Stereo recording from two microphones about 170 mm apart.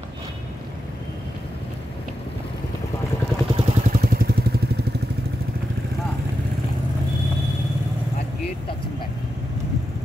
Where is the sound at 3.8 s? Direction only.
55° right (ahead or behind).